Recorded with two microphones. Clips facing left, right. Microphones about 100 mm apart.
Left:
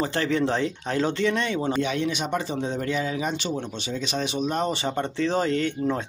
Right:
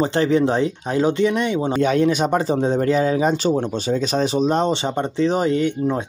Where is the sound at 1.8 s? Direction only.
45° right (ahead or behind).